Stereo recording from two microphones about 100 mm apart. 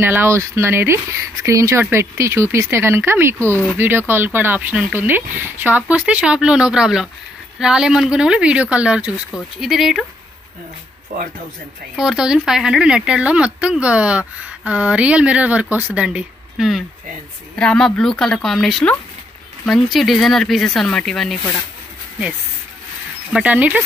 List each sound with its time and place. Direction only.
0.0 s speech: 20° right (ahead or behind); by 10.0 s centre (ahead or behind)
12.0 s speech: 5° right (ahead or behind)
17.6 s speech: 10° left (ahead or behind)
23.3 s speech: 15° right (ahead or behind)